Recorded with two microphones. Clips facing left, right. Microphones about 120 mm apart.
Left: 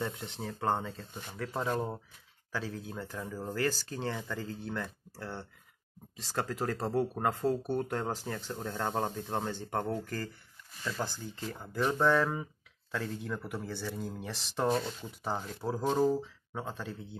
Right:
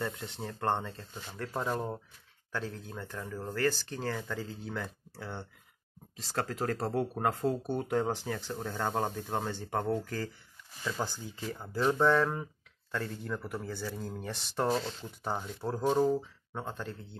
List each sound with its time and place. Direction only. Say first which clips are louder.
0.0 s speech: even; centre (ahead or behind)
6.3 s speech: right 1 dB; centre (ahead or behind)
11.0 s speech: right 1 dB; 10° right (ahead or behind); by 17.2 s 5° left (ahead or behind)